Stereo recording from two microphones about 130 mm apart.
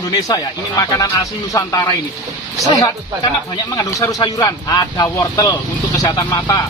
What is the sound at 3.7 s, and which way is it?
Speech, 30° left (ahead or behind).